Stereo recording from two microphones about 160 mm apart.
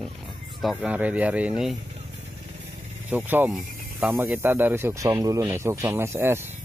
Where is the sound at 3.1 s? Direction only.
15° right (ahead or behind).